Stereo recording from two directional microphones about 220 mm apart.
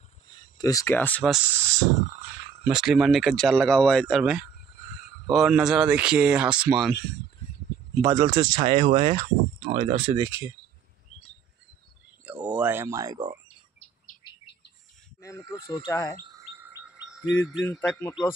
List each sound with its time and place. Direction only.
0.6 s speech: 15° left (ahead or behind); by 1.6 s centre (ahead or behind)
2.7 s speech: centre (ahead or behind)
8.0 s speech: 20° right (ahead or behind)
12.3 s speech: 5° right (ahead or behind)
15.5 s speech: 20° left (ahead or behind)
16.2 s chirp: 15° right (ahead or behind)
17.6 s speech: 10° left (ahead or behind)